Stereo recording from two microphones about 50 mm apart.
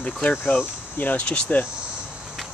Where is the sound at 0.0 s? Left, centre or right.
Left.